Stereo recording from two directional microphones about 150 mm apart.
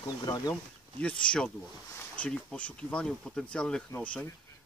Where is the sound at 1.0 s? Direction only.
5° left (ahead or behind).